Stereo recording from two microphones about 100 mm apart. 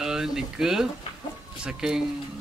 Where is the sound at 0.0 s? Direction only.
5° right (ahead or behind).